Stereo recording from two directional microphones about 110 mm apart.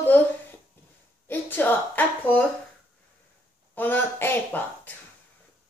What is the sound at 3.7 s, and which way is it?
Speech, 15° left (ahead or behind).